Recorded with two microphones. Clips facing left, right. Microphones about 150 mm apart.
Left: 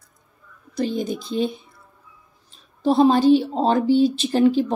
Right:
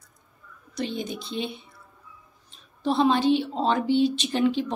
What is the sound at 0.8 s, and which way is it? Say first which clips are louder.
A woman's voice: left 6 dB; 40° left (ahead or behind).